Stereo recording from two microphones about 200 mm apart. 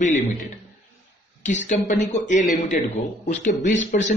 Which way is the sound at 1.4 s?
35° left (ahead or behind).